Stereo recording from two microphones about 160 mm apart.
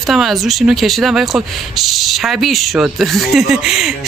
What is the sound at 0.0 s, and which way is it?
Speech, centre (ahead or behind).